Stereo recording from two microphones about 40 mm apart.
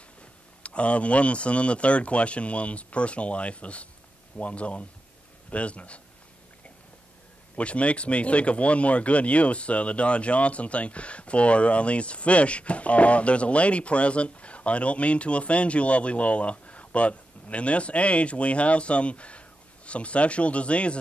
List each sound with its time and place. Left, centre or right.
0.6 s speech: left
7.5 s speech: left